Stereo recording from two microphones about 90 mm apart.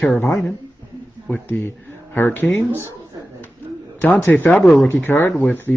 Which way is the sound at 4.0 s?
20° left (ahead or behind).